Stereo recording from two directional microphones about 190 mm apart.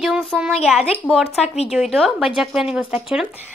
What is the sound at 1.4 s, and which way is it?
Speech, 35° left (ahead or behind).